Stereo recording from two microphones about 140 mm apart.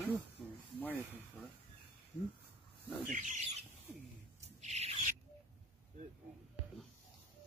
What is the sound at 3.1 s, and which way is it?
Bird, 65° right (ahead or behind).